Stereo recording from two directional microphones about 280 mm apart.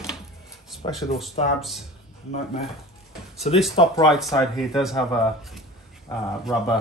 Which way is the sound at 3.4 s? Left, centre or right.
Left.